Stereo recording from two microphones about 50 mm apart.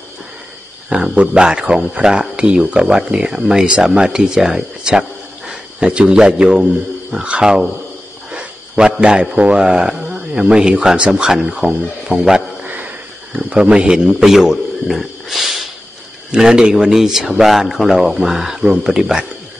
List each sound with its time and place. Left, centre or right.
0.8 s speech: centre
8.3 s cricket: centre
9.0 s speech: centre
12.1 s speech: right
12.6 s sniff: right
13.4 s speech: right; by 15.6 s centre
16.3 s speech: centre